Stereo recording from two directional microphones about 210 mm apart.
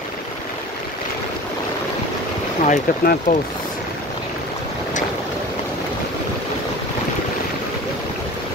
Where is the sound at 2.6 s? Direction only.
40° left (ahead or behind).